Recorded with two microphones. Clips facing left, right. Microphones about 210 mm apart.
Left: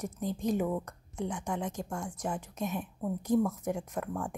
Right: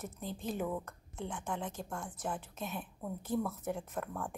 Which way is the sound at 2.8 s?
15° left (ahead or behind).